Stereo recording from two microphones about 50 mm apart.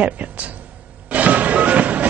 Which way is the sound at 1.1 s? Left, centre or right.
Right.